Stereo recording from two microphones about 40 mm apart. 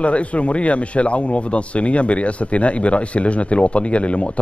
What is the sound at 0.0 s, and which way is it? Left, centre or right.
Speech, left.